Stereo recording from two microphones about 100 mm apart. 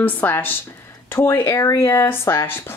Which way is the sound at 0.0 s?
20° left (ahead or behind).